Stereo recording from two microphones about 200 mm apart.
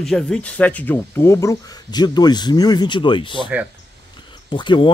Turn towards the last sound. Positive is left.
turn(degrees=25)  # may be behind; listen again after turning